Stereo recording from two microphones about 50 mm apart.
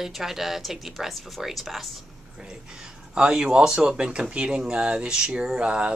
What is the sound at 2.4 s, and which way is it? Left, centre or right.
Speech, centre.